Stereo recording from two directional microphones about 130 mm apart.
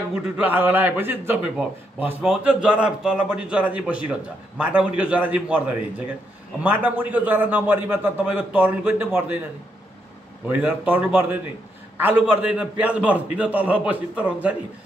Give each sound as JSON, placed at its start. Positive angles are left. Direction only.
{"t": 0.1, "sound": "a man's voice", "side_deg": -10}
{"t": 10.5, "sound": "a man's voice", "side_deg": -15}